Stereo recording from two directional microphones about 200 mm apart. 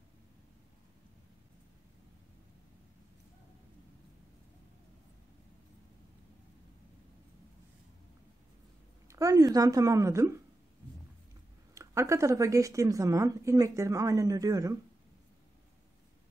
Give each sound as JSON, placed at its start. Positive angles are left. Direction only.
{"t": 9.0, "sound": "a woman's voice", "side_deg": -15}
{"t": 11.7, "sound": "a woman's voice", "side_deg": -15}